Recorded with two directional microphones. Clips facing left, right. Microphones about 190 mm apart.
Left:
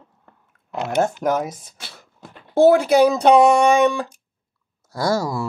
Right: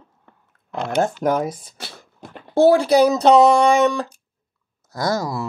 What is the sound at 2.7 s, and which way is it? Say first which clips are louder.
Speech: even; 10° left (ahead or behind).